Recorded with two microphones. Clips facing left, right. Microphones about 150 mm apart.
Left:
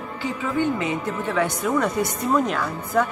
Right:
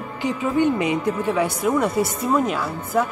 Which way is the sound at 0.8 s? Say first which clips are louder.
Right 4 dB; 15° right (ahead or behind).